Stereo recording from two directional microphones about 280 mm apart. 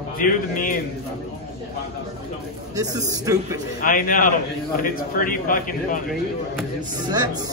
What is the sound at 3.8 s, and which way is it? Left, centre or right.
A man's voice, left.